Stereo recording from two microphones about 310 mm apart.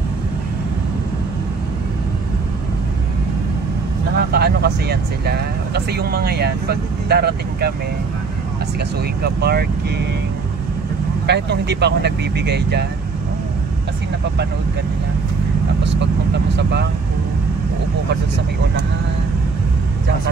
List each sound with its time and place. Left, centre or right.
4.3 s speech: right
9.2 s speech: right
11.2 s speech: right
15.8 s vehicle: right